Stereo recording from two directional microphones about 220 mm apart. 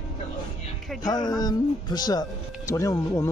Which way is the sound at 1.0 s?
20° left (ahead or behind).